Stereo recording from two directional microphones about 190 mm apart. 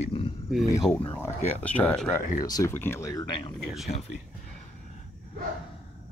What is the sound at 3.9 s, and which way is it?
Speech, 40° left (ahead or behind).